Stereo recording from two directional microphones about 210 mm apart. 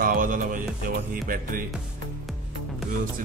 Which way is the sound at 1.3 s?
40° right (ahead or behind).